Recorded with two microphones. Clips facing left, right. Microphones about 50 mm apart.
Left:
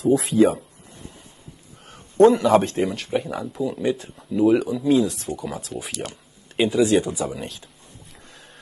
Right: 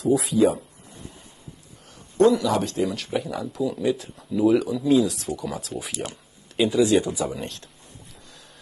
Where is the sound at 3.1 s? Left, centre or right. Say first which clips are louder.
Left 2 dB; centre.